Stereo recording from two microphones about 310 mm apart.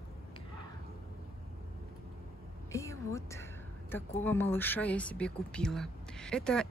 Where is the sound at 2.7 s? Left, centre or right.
Centre.